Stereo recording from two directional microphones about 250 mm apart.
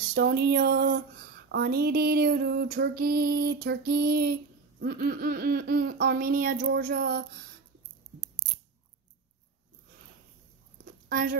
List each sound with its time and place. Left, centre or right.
0.1 s speech: right
11.1 s speech: right